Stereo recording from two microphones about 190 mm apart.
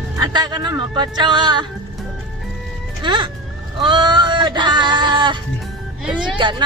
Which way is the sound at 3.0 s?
25° right (ahead or behind).